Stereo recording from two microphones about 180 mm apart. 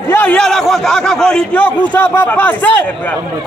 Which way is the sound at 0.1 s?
10° left (ahead or behind).